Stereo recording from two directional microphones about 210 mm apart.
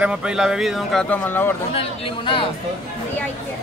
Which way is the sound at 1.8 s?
25° left (ahead or behind).